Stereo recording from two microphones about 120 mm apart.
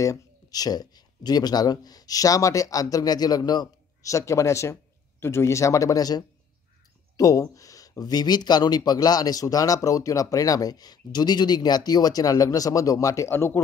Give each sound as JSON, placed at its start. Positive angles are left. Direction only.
{"t": 0.0, "sound": "speech", "side_deg": 30}